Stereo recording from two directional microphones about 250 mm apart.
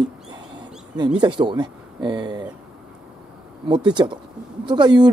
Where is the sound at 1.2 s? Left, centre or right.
Centre.